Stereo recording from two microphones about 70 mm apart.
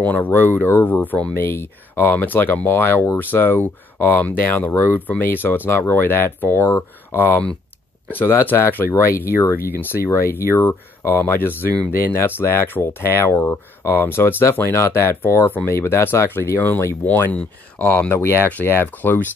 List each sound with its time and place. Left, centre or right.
0.0 s speech: left
18.1 s speech: left